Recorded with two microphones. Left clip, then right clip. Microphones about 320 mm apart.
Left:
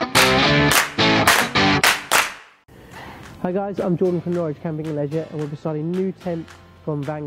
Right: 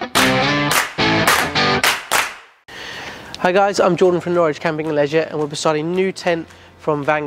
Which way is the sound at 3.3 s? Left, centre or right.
Centre.